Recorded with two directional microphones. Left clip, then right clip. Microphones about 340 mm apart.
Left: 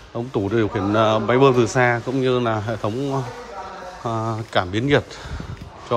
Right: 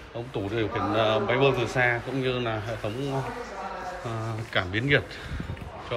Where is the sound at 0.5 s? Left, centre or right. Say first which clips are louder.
Left 6 dB; left.